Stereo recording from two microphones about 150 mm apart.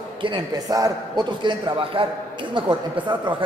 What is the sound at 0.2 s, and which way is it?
Speech, 30° right (ahead or behind).